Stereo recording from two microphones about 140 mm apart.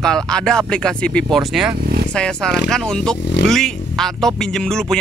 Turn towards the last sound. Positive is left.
turn(degrees=5)  # may be behind; listen again after turning